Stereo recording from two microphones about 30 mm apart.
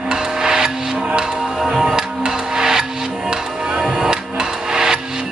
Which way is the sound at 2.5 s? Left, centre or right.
Centre.